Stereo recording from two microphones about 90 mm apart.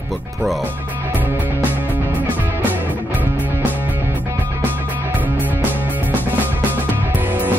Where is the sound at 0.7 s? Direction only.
20° right (ahead or behind).